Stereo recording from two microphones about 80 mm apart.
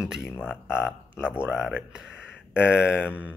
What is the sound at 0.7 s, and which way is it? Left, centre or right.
Speech, left.